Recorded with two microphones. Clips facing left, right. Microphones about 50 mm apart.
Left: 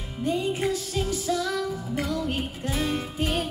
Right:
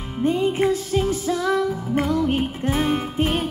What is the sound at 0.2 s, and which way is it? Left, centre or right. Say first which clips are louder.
Music: right 6 dB; right.